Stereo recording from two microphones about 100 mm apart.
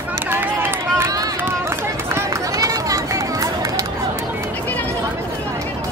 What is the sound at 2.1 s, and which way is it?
Run, 35° right (ahead or behind).